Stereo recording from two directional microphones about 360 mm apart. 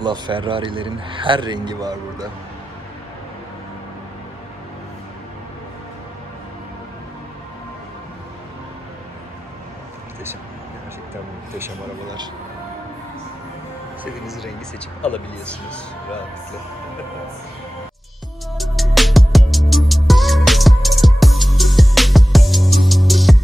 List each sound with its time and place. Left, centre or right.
0.0 s a man's voice: centre
11.5 s a man's voice: centre
14.0 s speech: centre
18.6 s music: centre